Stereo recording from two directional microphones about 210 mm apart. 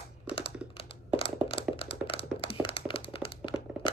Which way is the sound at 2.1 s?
25° left (ahead or behind).